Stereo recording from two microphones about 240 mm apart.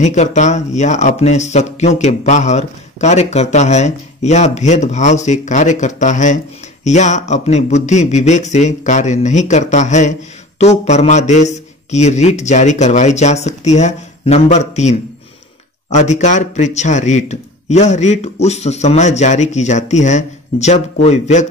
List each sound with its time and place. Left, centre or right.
0.0 s speech: left